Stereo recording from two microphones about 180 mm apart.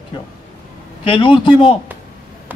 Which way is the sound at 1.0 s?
30° left (ahead or behind).